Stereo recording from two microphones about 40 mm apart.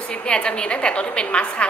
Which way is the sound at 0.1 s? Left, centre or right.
Left.